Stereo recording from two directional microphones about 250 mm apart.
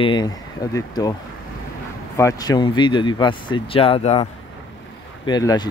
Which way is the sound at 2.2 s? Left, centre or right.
Centre.